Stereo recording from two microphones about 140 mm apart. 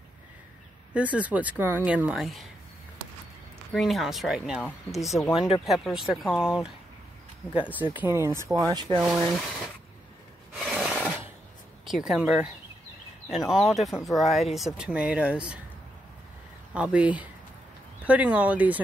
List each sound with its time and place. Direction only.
0.9 s speech: 10° right (ahead or behind)
3.7 s speech: centre (ahead or behind)
6.2 s speech: 15° left (ahead or behind)
7.5 s speech: 10° right (ahead or behind)
8.7 s speech: 30° right (ahead or behind)
9.0 s speech: 5° right (ahead or behind)
10.6 s rub: 5° right (ahead or behind)
11.9 s speech: 5° right (ahead or behind)
16.7 s speech: 10° right (ahead or behind)